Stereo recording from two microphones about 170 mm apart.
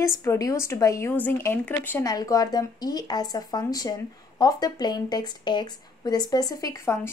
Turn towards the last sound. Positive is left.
turn(degrees=15)  # may be behind; listen again after turning